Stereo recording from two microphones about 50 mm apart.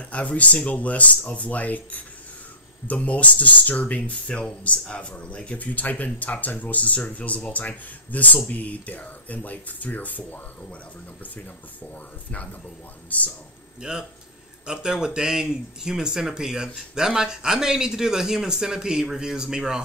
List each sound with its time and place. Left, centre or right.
0.1 s speech: left
13.7 s speech: centre